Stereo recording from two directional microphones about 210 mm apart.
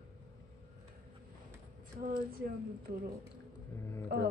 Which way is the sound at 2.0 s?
45° right (ahead or behind).